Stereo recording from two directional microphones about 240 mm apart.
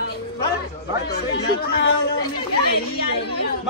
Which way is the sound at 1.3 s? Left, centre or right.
Left.